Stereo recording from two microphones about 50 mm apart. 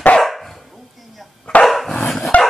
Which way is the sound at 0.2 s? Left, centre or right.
Centre.